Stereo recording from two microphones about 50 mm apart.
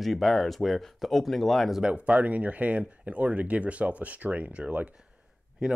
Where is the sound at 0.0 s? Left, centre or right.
Centre.